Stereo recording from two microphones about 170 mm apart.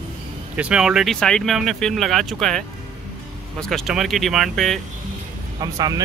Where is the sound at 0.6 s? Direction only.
5° right (ahead or behind).